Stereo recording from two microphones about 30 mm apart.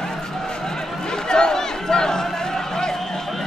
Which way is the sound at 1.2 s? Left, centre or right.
Left.